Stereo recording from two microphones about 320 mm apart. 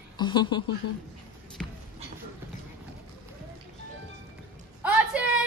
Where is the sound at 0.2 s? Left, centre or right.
Centre.